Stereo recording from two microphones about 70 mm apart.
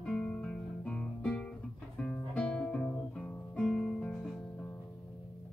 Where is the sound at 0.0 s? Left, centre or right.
Centre.